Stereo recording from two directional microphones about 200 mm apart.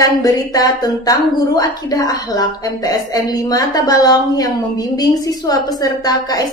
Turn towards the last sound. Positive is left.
turn(degrees=20)  # may be behind; listen again after turning